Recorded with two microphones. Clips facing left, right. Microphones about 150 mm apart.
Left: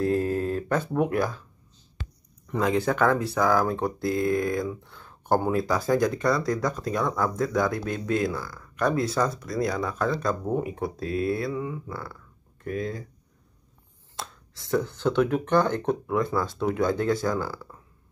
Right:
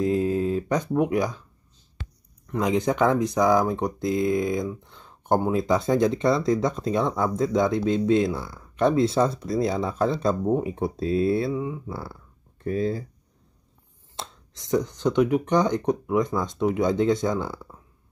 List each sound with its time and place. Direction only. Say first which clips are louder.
0.0 s speech: right 2 dB; 15° right (ahead or behind)
2.6 s speech: right 1 dB; 15° right (ahead or behind)
11.5 s speech: right 2 dB; 15° right (ahead or behind)
11.9 s speech: right 2 dB; 30° right (ahead or behind)
14.1 s speech: right 1 dB; 20° right (ahead or behind)